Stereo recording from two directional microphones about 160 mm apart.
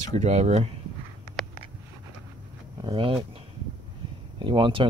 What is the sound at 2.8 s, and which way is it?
Speech, 30° right (ahead or behind).